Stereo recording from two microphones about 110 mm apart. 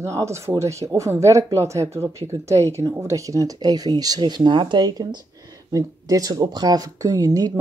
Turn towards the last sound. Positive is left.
turn(degrees=-35)  # may be behind; listen again after turning